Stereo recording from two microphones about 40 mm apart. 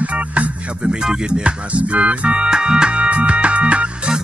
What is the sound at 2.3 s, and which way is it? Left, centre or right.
Music, centre.